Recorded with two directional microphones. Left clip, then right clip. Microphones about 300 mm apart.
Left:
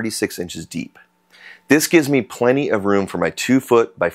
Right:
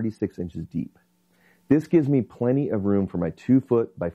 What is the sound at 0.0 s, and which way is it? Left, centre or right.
Speech, centre.